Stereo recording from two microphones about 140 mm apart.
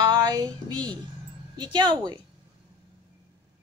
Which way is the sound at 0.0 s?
30° right (ahead or behind).